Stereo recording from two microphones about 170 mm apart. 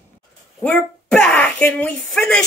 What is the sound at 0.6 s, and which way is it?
Speech, 5° left (ahead or behind).